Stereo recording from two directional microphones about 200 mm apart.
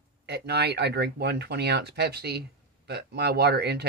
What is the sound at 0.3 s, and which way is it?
Speech, 55° right (ahead or behind).